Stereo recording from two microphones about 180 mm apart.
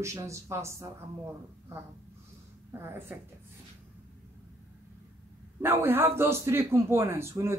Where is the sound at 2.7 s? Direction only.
15° right (ahead or behind).